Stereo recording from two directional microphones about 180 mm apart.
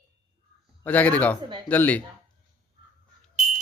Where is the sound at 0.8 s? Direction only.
10° left (ahead or behind).